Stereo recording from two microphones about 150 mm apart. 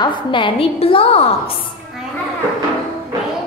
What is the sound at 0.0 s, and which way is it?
A woman's voice, 30° left (ahead or behind).